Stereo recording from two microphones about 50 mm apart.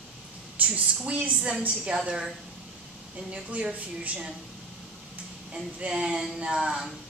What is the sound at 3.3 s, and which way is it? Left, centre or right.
Speech, right.